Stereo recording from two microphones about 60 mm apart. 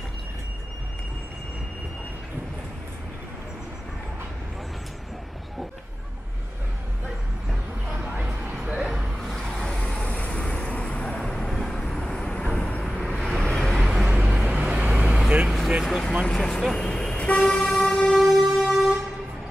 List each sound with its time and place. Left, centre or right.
8.3 s a sound: centre
8.8 s vehicle: centre
9.3 s vehicle: centre
12.0 s vehicle: centre
13.6 s vehicle: centre
15.8 s a sound: centre
16.3 s vehicle: centre
17.8 s train: centre
18.1 s music: centre